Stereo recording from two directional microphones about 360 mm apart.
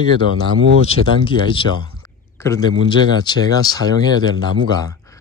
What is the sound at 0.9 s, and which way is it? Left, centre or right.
Speech, centre.